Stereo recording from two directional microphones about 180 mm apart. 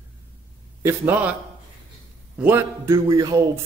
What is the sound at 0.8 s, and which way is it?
Speech, 10° right (ahead or behind).